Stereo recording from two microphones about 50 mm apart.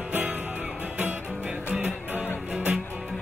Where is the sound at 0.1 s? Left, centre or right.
Right.